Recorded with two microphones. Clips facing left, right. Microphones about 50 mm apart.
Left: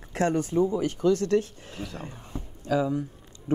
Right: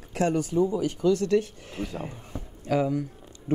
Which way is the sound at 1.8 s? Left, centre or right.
Right.